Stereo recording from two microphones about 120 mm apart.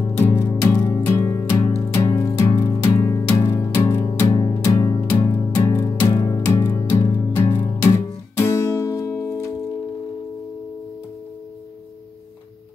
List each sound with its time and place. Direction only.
0.2 s music: 20° left (ahead or behind)
6.4 s music: 20° left (ahead or behind)